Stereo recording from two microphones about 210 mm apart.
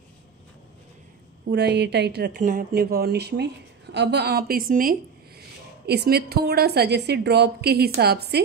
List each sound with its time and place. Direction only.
1.5 s a woman's voice: 50° right (ahead or behind)
2.4 s a woman's voice: 40° right (ahead or behind)